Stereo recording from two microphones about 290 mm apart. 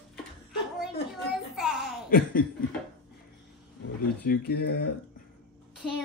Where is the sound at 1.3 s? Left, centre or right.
Centre.